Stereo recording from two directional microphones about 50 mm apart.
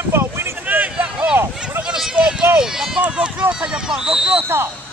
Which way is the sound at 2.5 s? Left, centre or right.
Centre.